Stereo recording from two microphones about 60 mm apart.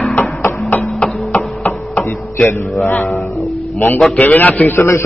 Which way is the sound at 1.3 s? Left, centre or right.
Left.